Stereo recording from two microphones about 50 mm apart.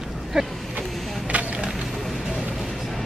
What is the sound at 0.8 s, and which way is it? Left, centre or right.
Vehicle, right.